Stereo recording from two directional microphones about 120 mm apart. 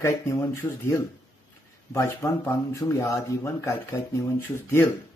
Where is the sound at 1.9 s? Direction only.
25° left (ahead or behind).